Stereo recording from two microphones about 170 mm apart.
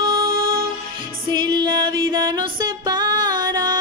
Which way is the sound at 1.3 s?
25° right (ahead or behind).